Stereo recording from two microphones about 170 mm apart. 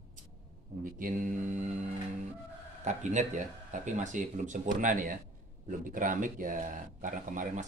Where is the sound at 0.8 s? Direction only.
50° right (ahead or behind).